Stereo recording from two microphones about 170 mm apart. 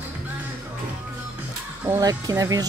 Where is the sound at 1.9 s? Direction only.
20° right (ahead or behind).